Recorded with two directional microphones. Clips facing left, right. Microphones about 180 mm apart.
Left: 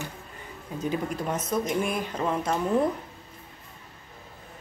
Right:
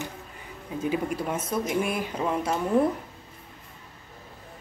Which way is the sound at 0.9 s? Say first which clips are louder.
Right 1 dB; 10° right (ahead or behind).